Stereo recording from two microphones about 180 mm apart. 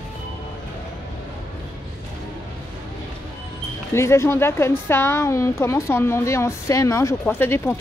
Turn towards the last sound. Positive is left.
turn(degrees=10)  # may be behind; listen again after turning